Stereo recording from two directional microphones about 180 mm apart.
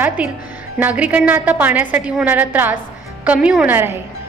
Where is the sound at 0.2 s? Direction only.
5° right (ahead or behind).